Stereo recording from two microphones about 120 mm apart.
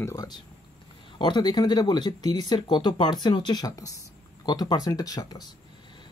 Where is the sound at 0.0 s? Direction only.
30° left (ahead or behind).